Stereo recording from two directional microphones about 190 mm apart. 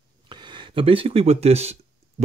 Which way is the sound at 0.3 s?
25° right (ahead or behind).